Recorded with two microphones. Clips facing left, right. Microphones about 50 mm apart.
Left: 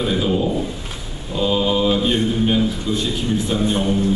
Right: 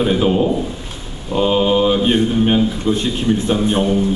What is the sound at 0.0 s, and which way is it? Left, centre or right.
Speech, right.